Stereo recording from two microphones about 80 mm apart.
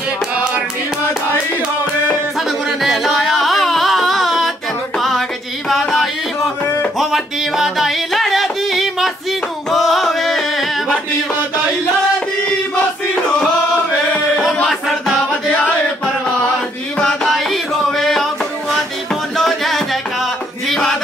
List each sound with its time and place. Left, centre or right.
2.8 s music: centre
5.7 s a sound: centre
6.6 s music: left
7.0 s music: centre
14.3 s music: centre
17.0 s music: centre
19.3 s music: centre